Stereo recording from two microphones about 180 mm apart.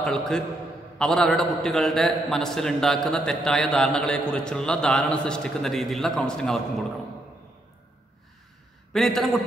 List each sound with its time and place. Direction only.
0.0 s a man's voice: 5° left (ahead or behind)
8.9 s a man's voice: centre (ahead or behind)